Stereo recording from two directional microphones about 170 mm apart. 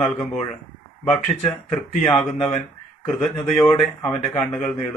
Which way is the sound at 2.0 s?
5° left (ahead or behind).